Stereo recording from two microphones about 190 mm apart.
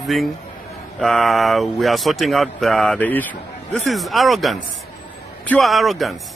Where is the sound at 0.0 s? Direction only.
Centre (ahead or behind).